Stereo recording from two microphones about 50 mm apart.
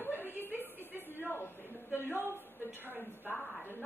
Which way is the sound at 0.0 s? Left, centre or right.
Left.